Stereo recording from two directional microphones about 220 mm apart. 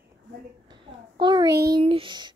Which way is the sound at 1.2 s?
20° right (ahead or behind).